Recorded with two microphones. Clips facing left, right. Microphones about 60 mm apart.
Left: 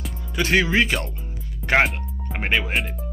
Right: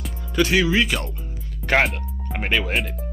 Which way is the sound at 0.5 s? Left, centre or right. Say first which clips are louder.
Left 3 dB; left.